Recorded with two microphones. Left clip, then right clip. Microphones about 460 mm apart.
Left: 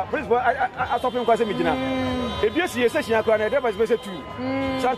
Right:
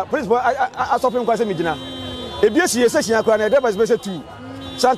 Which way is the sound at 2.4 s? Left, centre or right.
Right.